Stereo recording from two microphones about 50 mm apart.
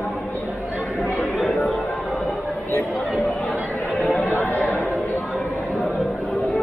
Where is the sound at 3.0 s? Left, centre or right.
Centre.